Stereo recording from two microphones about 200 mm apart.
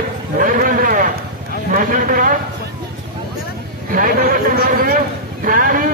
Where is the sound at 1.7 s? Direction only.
45° right (ahead or behind).